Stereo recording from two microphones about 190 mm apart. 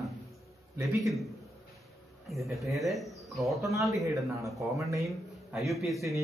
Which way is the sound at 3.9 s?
15° right (ahead or behind).